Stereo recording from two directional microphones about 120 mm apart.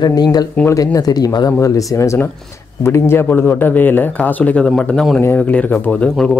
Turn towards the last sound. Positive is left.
turn(degrees=5)  # may be behind; listen again after turning